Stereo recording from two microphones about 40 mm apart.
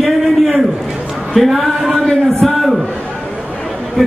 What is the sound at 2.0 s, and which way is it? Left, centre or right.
Speech, left.